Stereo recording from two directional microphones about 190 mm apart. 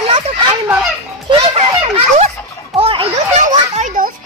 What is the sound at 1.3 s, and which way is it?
Children playing, 30° right (ahead or behind).